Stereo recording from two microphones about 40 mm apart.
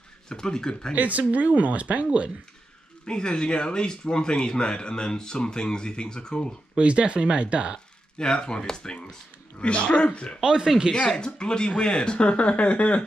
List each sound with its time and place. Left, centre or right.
0.3 s speech: centre
0.9 s speech: right
3.1 s speech: left
6.7 s speech: right
8.2 s speech: centre
10.4 s speech: centre
11.1 s speech: left